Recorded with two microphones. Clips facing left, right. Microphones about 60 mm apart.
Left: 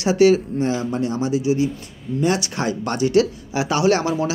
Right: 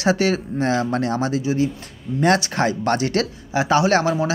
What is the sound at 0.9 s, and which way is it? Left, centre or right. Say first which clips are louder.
Speech: right 1 dB; right.